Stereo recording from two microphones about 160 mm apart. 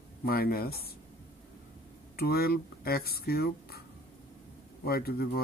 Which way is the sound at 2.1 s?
75° left (ahead or behind).